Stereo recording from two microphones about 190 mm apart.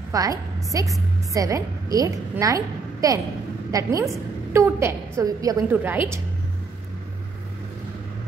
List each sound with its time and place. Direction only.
0.1 s a woman's voice: 20° right (ahead or behind)